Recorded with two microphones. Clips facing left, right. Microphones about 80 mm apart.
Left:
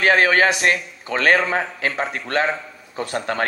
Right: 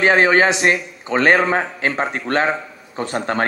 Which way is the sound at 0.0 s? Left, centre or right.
Right.